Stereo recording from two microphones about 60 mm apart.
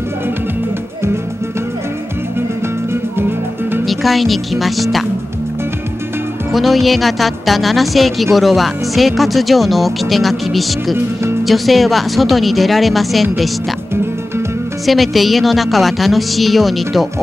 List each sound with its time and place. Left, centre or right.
2.9 s music: right
3.8 s a woman's voice: centre
6.5 s a woman's voice: centre
14.9 s a woman's voice: centre